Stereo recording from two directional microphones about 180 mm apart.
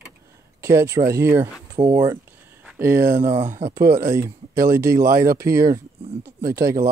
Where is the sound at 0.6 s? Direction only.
15° right (ahead or behind).